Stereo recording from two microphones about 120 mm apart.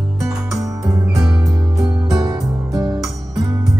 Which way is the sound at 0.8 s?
5° right (ahead or behind).